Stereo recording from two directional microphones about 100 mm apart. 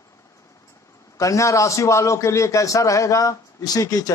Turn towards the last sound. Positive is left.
turn(degrees=40)  # may be behind; listen again after turning